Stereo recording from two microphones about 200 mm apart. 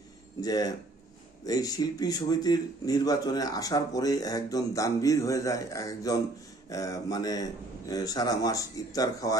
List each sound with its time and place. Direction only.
0.4 s a man's voice: 20° left (ahead or behind)